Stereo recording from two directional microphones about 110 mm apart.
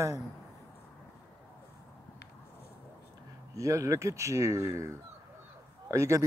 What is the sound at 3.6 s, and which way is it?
Speech, 30° right (ahead or behind).